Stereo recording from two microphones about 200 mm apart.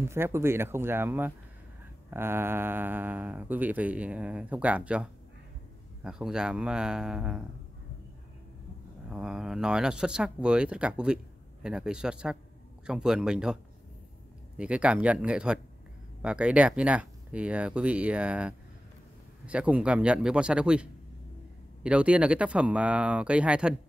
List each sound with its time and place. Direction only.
0.1 s speech: 15° right (ahead or behind)
9.1 s speech: 5° right (ahead or behind)
14.6 s speech: 5° right (ahead or behind)